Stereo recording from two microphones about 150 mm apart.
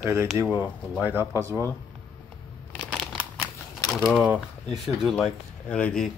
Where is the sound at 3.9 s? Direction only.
5° left (ahead or behind).